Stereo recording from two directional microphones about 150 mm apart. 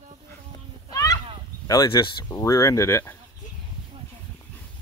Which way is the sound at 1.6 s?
25° left (ahead or behind).